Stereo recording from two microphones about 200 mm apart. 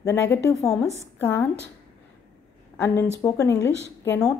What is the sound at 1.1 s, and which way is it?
Speech, 10° left (ahead or behind).